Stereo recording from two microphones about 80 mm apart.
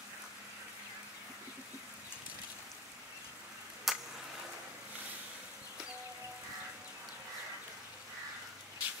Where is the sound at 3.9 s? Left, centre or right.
Centre.